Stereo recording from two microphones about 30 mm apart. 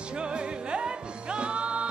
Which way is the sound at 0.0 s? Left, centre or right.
Right.